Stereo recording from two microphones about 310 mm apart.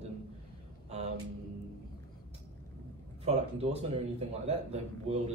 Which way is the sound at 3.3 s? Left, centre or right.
Right.